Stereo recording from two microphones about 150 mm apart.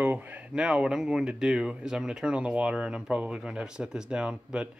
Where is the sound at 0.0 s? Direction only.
10° right (ahead or behind).